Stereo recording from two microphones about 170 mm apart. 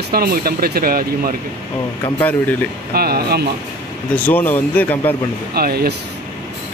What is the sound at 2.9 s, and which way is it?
Speech, 65° right (ahead or behind).